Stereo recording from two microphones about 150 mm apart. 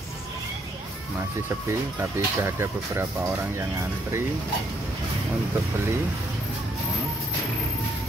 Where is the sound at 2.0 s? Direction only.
15° right (ahead or behind).